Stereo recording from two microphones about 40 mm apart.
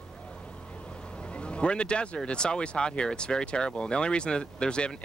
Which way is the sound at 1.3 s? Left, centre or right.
Left.